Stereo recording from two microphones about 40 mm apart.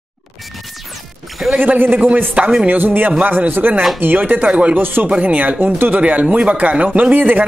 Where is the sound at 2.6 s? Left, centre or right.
Right.